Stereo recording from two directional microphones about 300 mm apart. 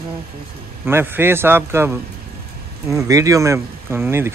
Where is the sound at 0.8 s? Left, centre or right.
Centre.